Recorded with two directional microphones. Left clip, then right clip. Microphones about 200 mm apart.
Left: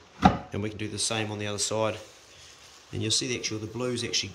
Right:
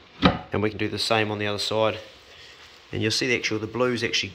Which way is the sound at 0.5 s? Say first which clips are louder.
Right 8 dB; 5° left (ahead or behind).